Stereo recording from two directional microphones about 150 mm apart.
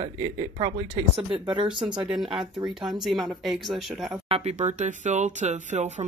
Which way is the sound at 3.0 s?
Centre (ahead or behind).